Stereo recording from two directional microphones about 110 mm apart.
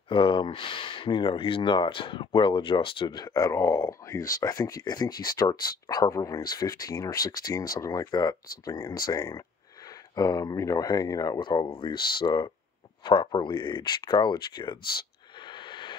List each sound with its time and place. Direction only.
0.1 s speech: 50° left (ahead or behind); by 11.4 s 35° left (ahead or behind)
11.4 s speech: 50° left (ahead or behind)
15.4 s a sound: 45° left (ahead or behind)